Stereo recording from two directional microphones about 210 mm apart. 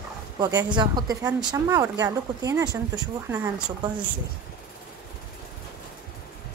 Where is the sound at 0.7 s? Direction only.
20° right (ahead or behind).